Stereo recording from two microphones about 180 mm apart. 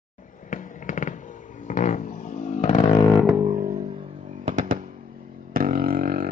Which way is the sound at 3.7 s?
25° right (ahead or behind).